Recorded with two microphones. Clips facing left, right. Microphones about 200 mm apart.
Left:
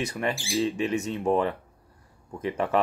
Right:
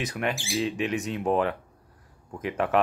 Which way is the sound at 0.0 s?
Centre (ahead or behind).